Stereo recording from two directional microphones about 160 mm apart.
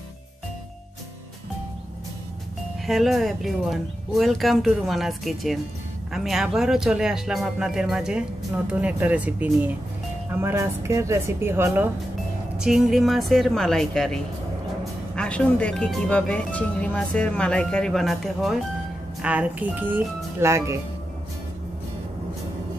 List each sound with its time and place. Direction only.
2.9 s speech: centre (ahead or behind)
12.5 s speech: 5° right (ahead or behind)